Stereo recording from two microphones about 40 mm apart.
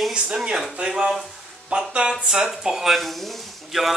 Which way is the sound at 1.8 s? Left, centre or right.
Right.